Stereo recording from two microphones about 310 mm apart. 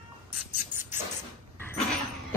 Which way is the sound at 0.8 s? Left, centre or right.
Left.